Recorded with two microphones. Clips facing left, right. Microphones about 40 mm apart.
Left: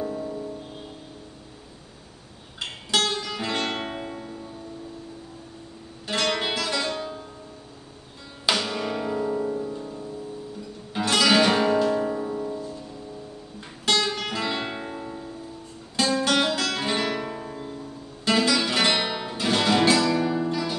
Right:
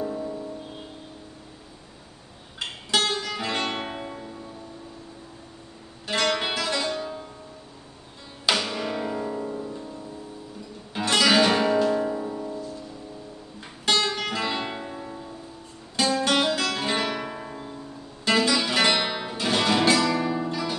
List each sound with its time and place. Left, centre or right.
0.0 s music: centre
2.9 s music: centre
6.0 s music: centre
8.5 s music: centre
10.9 s guitar: centre
14.0 s music: centre
14.8 s music: centre
16.0 s music: centre